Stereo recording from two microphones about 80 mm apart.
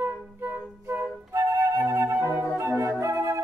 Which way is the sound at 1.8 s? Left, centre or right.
Right.